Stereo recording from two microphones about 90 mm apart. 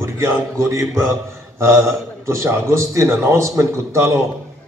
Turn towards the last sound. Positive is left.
turn(degrees=-30)  # may be behind; listen again after turning